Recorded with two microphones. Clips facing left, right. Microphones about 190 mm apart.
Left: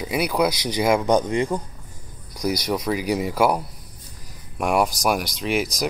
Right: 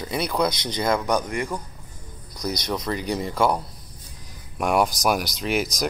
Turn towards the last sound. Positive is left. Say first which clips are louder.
# left 1 dB
turn(degrees=0)  # may be behind; listen again after turning